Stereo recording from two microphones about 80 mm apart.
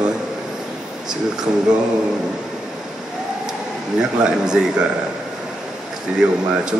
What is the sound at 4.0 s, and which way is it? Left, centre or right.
Speech, centre.